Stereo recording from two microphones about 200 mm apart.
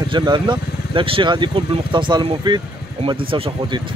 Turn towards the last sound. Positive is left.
turn(degrees=-25)  # may be behind; listen again after turning